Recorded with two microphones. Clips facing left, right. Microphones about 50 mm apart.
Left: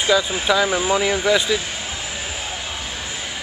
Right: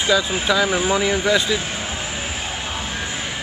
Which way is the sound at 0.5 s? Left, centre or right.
Centre.